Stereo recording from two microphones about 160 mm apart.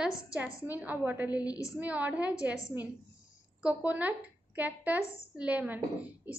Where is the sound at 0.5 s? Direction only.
20° left (ahead or behind).